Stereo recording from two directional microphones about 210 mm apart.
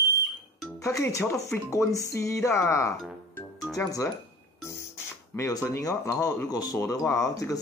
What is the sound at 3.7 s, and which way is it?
Speech, 15° left (ahead or behind).